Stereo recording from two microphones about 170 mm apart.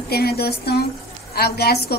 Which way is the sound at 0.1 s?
65° left (ahead or behind).